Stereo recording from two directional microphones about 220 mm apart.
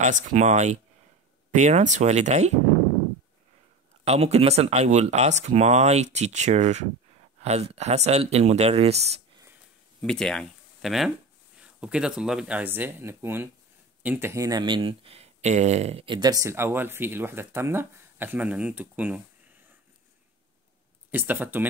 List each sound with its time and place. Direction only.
0.0 s speech: 35° right (ahead or behind)
4.0 s speech: 30° right (ahead or behind)
10.0 s speech: 5° left (ahead or behind)
21.1 s speech: 10° right (ahead or behind)